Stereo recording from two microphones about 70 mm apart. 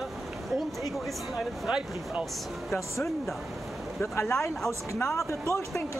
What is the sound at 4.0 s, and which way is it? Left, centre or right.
Speech, left.